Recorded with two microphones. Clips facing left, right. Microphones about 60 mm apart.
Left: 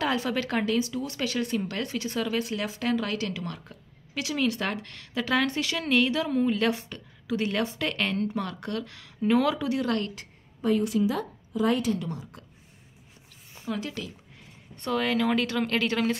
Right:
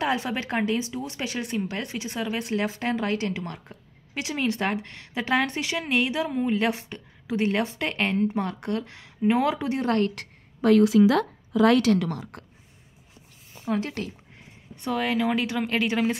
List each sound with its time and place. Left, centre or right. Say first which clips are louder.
0.0 s speech: right 1 dB; right
10.1 s a woman's voice: right 4 dB; right
13.7 s speech: right 5 dB; right
14.8 s a woman's voice: right 1 dB; centre